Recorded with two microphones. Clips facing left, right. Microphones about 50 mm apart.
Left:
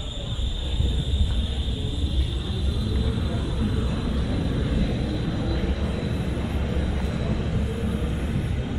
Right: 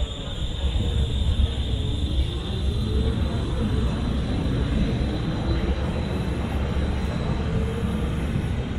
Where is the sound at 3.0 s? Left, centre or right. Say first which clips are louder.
Right 1 dB; centre.